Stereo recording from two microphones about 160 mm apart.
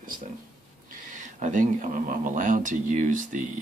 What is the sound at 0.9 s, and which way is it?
Speech, 50° right (ahead or behind).